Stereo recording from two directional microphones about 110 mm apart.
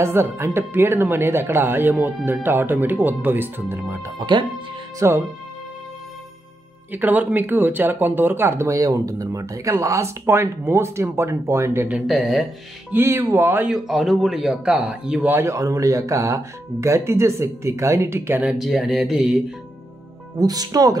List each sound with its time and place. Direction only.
0.0 s speech: 25° right (ahead or behind)
4.2 s speech: 45° right (ahead or behind)
4.9 s speech: 25° right (ahead or behind)
6.9 s speech: 15° right (ahead or behind)
12.1 s speech: centre (ahead or behind)
12.9 s speech: 20° right (ahead or behind)
13.7 s speech: centre (ahead or behind)
15.2 s speech: 25° right (ahead or behind)
18.6 s speech: centre (ahead or behind)
20.3 s speech: 35° right (ahead or behind)